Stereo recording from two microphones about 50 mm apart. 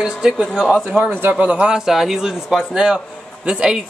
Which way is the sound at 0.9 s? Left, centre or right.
Right.